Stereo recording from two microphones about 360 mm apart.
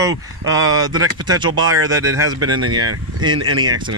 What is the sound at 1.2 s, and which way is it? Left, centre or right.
Speech, centre.